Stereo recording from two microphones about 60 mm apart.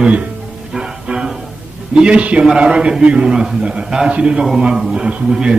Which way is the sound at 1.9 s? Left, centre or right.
Centre.